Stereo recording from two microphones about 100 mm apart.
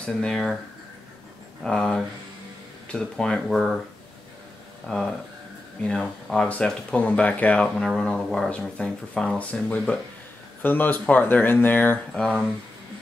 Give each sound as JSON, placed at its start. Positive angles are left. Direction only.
{"t": 0.0, "sound": "speech", "side_deg": 5}
{"t": 1.6, "sound": "speech", "side_deg": 5}
{"t": 4.8, "sound": "speech", "side_deg": 5}